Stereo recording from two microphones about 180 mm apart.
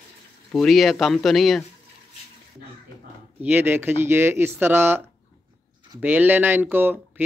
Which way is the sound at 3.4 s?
10° right (ahead or behind).